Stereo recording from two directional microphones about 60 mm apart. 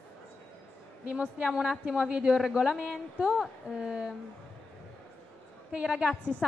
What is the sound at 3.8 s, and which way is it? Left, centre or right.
Speech, centre.